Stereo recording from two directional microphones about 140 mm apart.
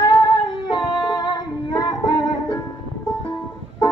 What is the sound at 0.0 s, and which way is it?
Female singing, 30° left (ahead or behind).